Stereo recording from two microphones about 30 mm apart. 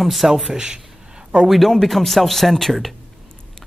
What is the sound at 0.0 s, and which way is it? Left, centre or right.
Speech, centre.